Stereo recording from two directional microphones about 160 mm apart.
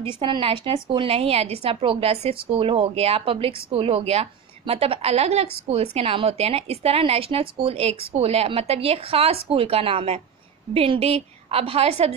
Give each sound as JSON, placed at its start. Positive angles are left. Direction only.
{"t": 0.1, "sound": "a woman's voice", "side_deg": -30}